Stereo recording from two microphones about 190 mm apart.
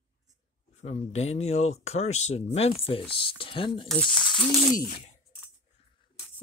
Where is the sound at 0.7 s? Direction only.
35° left (ahead or behind).